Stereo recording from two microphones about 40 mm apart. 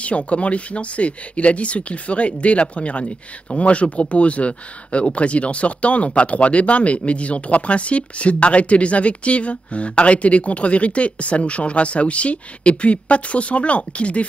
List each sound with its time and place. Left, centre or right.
0.0 s speech: left